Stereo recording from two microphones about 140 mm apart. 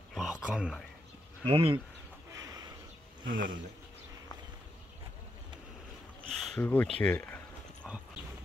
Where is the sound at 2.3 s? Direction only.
25° right (ahead or behind).